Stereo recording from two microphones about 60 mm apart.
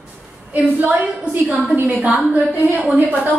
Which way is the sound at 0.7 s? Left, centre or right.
Right.